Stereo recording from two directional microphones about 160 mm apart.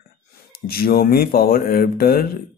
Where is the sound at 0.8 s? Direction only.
70° left (ahead or behind).